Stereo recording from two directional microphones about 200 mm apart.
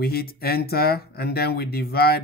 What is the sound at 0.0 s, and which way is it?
Speech, 50° left (ahead or behind).